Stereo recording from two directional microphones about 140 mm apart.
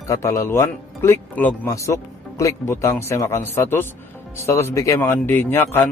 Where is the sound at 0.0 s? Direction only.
20° left (ahead or behind).